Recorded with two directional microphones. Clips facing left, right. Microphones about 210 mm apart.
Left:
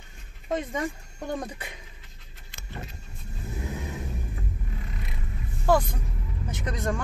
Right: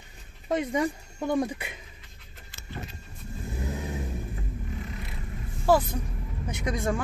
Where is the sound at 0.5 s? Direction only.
10° right (ahead or behind).